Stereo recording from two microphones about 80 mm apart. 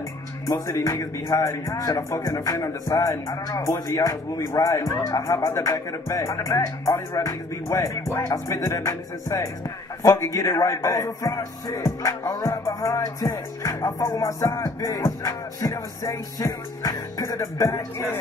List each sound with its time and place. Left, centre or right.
0.5 s speech: left